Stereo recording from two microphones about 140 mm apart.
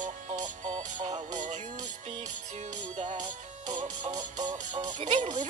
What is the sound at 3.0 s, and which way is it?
Music, 60° right (ahead or behind).